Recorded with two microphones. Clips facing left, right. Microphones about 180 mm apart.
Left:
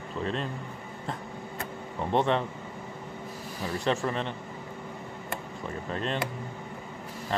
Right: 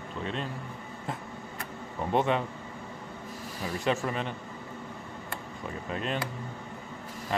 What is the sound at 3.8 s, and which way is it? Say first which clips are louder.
Speech: left 1 dB; 5° right (ahead or behind).